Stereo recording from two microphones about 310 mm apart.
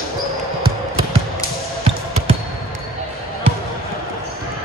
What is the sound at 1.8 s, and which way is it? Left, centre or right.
Basketball bounce, centre.